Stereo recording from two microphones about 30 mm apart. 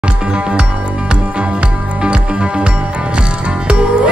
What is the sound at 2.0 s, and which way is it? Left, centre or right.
Music, right.